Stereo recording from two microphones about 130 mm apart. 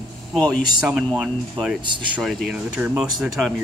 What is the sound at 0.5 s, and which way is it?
Speech, 5° right (ahead or behind).